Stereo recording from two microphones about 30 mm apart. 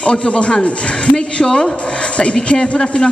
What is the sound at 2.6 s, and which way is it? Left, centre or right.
Speech, left.